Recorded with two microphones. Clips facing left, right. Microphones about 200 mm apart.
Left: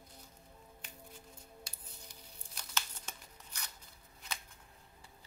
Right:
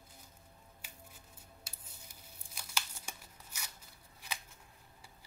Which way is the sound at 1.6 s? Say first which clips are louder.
Left 2 dB; 10° right (ahead or behind).